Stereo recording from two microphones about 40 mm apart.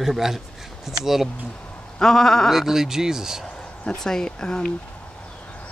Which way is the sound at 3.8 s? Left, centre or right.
Centre.